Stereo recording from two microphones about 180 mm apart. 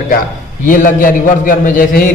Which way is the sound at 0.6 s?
50° left (ahead or behind).